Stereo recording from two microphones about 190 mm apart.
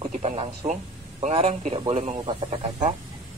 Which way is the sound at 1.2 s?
35° right (ahead or behind).